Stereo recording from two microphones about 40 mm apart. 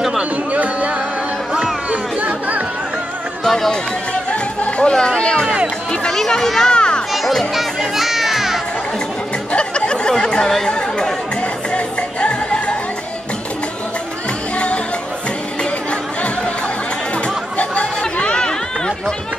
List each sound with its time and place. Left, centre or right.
0.5 s music: right
1.9 s chatter: right
3.4 s speech: centre
4.3 s music: left
4.9 s speech: centre
6.1 s speech: centre
6.7 s speech: left
7.1 s children playing: centre
9.5 s a sound: left
10.7 s speech: centre
11.7 s music: left
15.6 s music: left
17.1 s chatter: left